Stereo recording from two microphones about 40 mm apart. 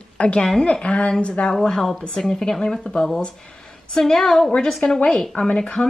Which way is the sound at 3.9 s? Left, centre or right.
Centre.